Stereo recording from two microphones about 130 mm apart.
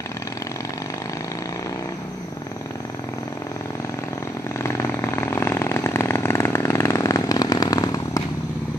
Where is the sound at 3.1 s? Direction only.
25° left (ahead or behind).